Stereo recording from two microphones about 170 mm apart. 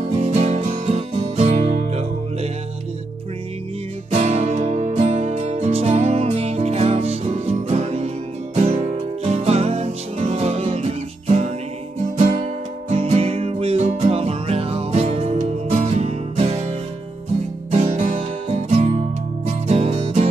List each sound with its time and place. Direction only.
0.0 s music: 40° right (ahead or behind)
4.1 s music: 40° right (ahead or behind)
12.9 s music: 35° right (ahead or behind)
17.9 s music: 50° right (ahead or behind)
18.7 s music: 40° right (ahead or behind)